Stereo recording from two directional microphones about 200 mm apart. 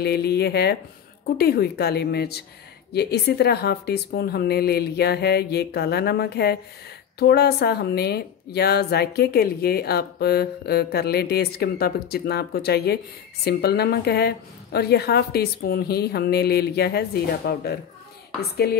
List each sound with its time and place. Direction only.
0.0 s speech: 55° left (ahead or behind)